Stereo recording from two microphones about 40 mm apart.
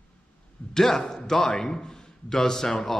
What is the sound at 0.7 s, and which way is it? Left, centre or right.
Speech, centre.